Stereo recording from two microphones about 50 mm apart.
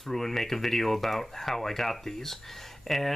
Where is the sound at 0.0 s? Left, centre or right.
Centre.